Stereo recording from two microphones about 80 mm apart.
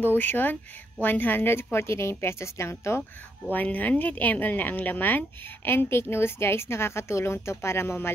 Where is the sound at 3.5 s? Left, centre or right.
Left.